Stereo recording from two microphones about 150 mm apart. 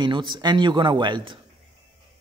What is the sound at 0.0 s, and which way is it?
A man's voice, 30° right (ahead or behind).